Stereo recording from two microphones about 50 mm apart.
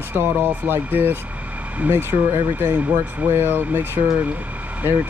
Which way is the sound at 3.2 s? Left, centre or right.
Right.